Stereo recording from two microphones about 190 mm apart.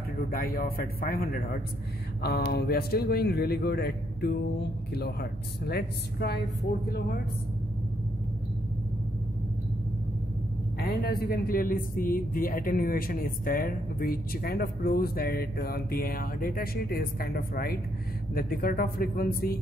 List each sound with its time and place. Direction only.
0.3 s a man's voice: 50° left (ahead or behind)
10.8 s a man's voice: 55° left (ahead or behind)